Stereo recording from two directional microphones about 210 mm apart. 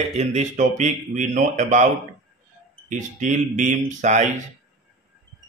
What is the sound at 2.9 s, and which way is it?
Speech, 35° right (ahead or behind).